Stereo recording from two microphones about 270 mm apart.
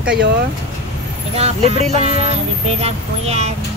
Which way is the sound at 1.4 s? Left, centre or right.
Right.